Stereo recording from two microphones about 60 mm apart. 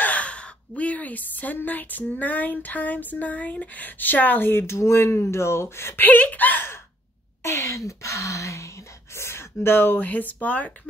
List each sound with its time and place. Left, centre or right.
0.0 s a woman's voice: left
7.4 s speech: left